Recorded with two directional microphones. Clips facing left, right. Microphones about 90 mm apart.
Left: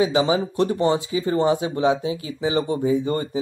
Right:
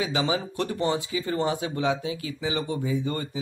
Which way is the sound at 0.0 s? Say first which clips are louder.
Left 7 dB; 25° left (ahead or behind).